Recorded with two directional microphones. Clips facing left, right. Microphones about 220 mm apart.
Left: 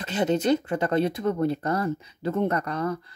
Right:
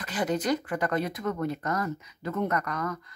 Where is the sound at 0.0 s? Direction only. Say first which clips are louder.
Left 5 dB; 25° left (ahead or behind).